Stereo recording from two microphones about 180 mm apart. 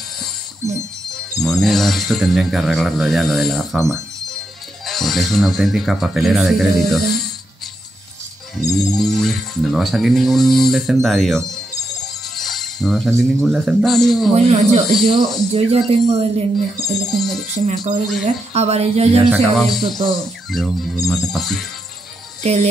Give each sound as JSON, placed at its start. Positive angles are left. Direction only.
{"t": 1.3, "sound": "speech", "side_deg": 0}
{"t": 4.8, "sound": "speech", "side_deg": 0}
{"t": 8.6, "sound": "speech", "side_deg": 0}
{"t": 12.4, "sound": "jingle bell", "side_deg": 0}
{"t": 13.2, "sound": "speech", "side_deg": 0}
{"t": 14.3, "sound": "speech", "side_deg": -40}
{"t": 15.1, "sound": "speech", "side_deg": 0}
{"t": 15.5, "sound": "speech", "side_deg": -35}
{"t": 16.8, "sound": "speech", "side_deg": 0}
{"t": 17.6, "sound": "speech", "side_deg": -40}
{"t": 19.3, "sound": "speech", "side_deg": 0}
{"t": 22.4, "sound": "speech", "side_deg": -35}